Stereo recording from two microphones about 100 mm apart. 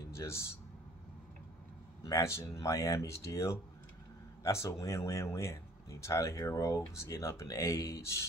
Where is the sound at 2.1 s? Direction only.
30° left (ahead or behind).